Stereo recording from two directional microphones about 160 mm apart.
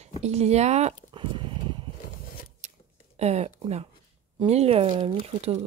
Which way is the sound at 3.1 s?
45° right (ahead or behind).